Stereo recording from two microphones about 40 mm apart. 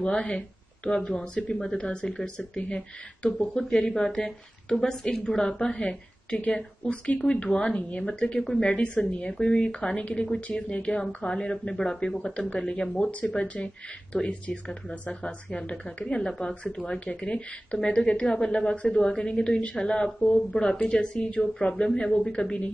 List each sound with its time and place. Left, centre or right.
0.0 s speech: left
7.2 s speech: left
8.4 s speech: centre
8.6 s speech: left